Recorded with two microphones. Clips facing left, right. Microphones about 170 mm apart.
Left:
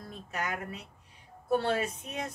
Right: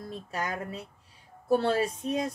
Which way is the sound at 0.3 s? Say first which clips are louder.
Right 1 dB; 30° right (ahead or behind).